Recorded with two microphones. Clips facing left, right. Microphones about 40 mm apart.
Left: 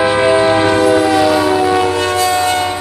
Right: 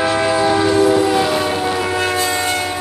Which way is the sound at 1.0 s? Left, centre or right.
Left.